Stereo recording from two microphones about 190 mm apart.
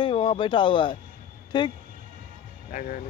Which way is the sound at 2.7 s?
45° left (ahead or behind).